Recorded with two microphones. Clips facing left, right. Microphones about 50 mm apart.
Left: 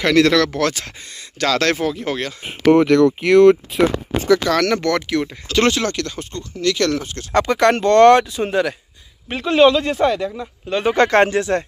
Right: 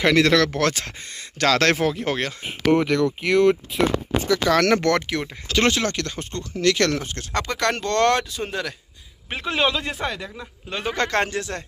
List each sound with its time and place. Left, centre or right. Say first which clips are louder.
0.0 s speech: left 3 dB; centre
0.4 s speech: left 2 dB; right
2.4 s speech: left 7 dB; left
2.8 s speech: left 8 dB; left
4.4 s speech: left 1 dB; centre
4.9 s speech: left 1 dB; right
5.2 s speech: left 4 dB; centre
5.9 s speech: left 3 dB; right
6.3 s speech: even; right
6.9 s speech: left 3 dB; right
7.3 s speech: left 8 dB; centre
9.3 s speech: left 9 dB; centre
10.9 s speech: left 8 dB; left